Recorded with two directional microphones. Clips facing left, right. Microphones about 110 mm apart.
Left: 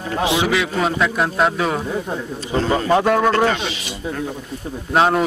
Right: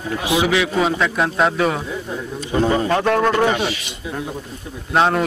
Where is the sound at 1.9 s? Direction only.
45° left (ahead or behind).